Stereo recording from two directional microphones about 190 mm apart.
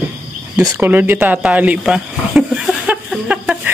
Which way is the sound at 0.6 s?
10° right (ahead or behind).